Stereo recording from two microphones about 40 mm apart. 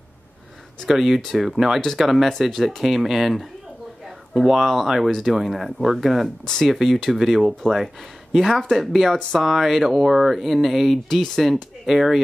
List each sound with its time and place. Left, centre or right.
0.8 s speech: centre